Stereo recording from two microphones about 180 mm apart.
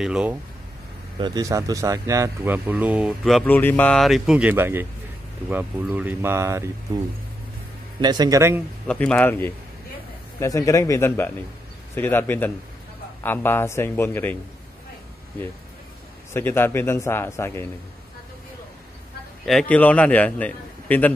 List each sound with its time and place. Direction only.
0.0 s speech: 5° right (ahead or behind)
1.2 s speech: 20° right (ahead or behind)
8.0 s a man's voice: 25° right (ahead or behind)
8.8 s a man's voice: 5° left (ahead or behind)
16.3 s a man's voice: 15° left (ahead or behind)
19.4 s a man's voice: 5° left (ahead or behind)